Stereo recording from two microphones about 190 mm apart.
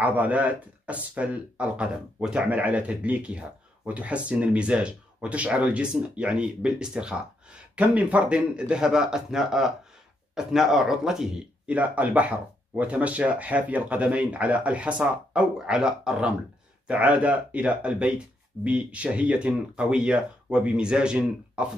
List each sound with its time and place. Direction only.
0.0 s speech: 10° right (ahead or behind)